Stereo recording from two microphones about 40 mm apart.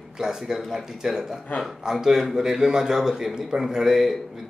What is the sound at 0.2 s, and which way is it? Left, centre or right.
Speech, centre.